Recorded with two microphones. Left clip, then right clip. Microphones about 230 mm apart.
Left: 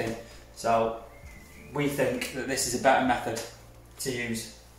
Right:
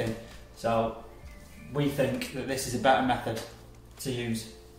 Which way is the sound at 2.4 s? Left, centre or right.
Centre.